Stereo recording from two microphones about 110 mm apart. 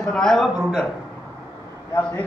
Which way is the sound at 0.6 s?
5° right (ahead or behind).